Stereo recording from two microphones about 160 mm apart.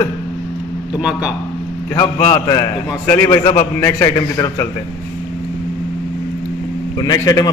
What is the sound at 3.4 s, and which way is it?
Speech, 35° left (ahead or behind).